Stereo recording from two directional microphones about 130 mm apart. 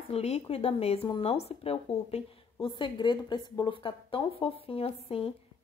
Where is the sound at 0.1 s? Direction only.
50° left (ahead or behind).